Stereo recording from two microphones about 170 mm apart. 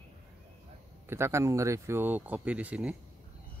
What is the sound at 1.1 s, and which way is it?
Speech, 15° right (ahead or behind).